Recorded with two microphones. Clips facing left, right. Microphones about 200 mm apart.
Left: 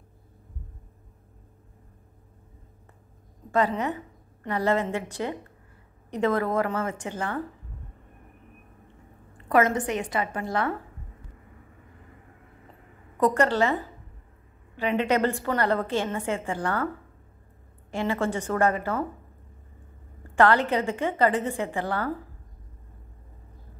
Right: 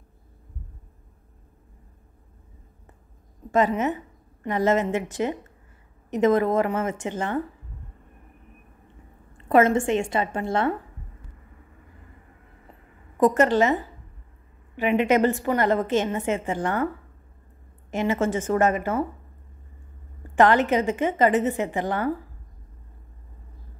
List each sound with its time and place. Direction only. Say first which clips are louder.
3.5 s a woman's voice: right 3 dB; 20° right (ahead or behind)
6.0 s a woman's voice: right 5 dB; 20° right (ahead or behind)
9.5 s a woman's voice: right 4 dB; 25° right (ahead or behind)
13.2 s a woman's voice: right 3 dB; 20° right (ahead or behind)
14.8 s a woman's voice: right 4 dB; 15° right (ahead or behind)
17.9 s a woman's voice: right 3 dB; 20° right (ahead or behind)
20.3 s a woman's voice: right 3 dB; 20° right (ahead or behind)